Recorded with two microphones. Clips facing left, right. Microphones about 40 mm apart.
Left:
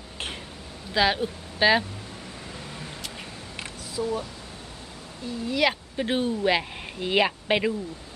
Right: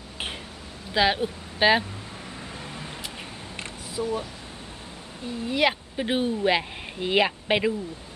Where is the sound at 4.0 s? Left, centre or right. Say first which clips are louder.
Even; right.